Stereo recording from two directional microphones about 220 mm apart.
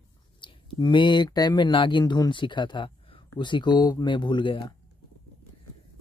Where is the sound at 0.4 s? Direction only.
20° left (ahead or behind).